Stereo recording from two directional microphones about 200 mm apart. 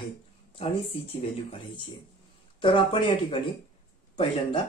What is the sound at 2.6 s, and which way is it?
Speech, 25° left (ahead or behind).